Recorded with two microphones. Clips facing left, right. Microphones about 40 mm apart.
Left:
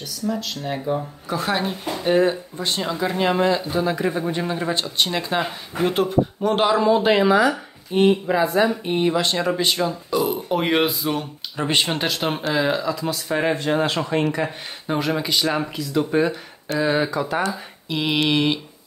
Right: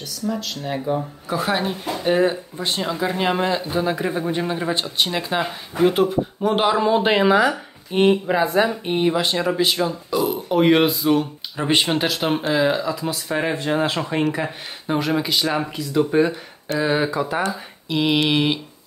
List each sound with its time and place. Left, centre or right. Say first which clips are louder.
0.3 s speech: even; centre
7.0 s speech: even; right
8.6 s speech: even; centre